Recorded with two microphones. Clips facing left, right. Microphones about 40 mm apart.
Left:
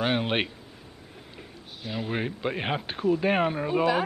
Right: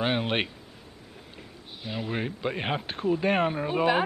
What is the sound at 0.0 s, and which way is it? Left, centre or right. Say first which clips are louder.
Speech: left 1 dB; centre.